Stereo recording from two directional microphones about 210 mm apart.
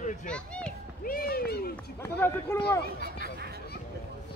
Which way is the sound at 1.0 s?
45° left (ahead or behind).